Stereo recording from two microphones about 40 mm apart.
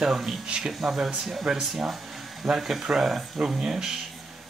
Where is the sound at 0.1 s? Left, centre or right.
Centre.